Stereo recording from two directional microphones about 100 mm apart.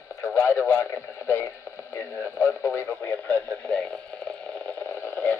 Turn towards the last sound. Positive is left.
turn(degrees=20)  # may be behind; listen again after turning